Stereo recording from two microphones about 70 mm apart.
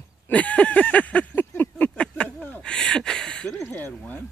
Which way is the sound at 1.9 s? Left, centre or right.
Centre.